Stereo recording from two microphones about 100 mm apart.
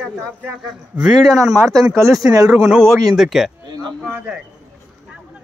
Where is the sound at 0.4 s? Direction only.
10° right (ahead or behind).